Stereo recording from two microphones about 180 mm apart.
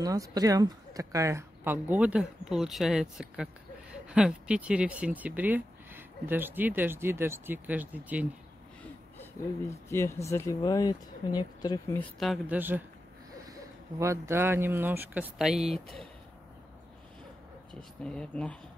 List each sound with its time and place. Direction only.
0.0 s speech: 20° right (ahead or behind)
9.8 s speech: 15° left (ahead or behind)
12.0 s speech: centre (ahead or behind)
12.5 s speech: 10° right (ahead or behind)
18.0 s speech: 5° left (ahead or behind)